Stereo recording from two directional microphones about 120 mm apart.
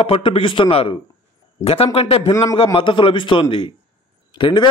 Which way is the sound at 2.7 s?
45° left (ahead or behind).